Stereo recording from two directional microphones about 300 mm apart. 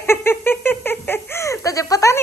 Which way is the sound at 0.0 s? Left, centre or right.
Centre.